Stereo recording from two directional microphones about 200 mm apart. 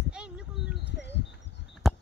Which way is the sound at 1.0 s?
60° left (ahead or behind).